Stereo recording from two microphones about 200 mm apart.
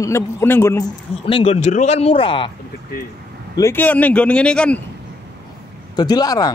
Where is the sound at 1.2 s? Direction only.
30° left (ahead or behind).